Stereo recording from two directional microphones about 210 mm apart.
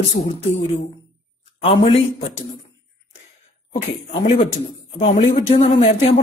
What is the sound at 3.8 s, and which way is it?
Speech, 30° left (ahead or behind).